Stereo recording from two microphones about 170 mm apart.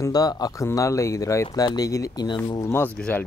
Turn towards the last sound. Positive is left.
turn(degrees=10)  # may be behind; listen again after turning